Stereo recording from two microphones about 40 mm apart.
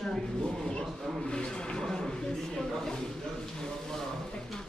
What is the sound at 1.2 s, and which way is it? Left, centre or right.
Speech, left.